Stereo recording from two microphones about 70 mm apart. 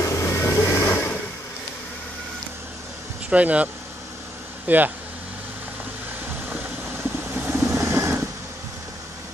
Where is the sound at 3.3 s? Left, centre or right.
Centre.